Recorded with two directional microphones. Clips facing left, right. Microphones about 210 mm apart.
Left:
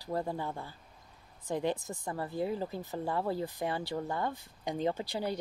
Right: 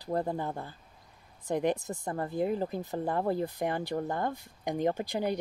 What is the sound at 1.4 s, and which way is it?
Speech, 15° right (ahead or behind).